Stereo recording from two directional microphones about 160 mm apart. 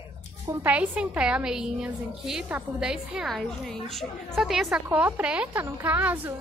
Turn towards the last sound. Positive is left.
turn(degrees=-10)  # may be behind; listen again after turning